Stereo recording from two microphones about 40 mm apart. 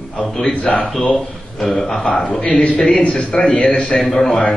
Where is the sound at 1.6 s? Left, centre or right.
Centre.